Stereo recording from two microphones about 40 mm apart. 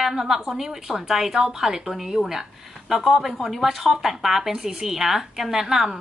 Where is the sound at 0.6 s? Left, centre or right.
Centre.